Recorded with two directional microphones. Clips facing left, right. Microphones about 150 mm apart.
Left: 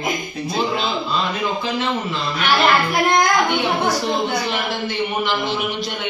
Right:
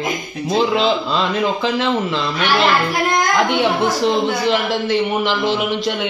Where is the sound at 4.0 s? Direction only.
90° right.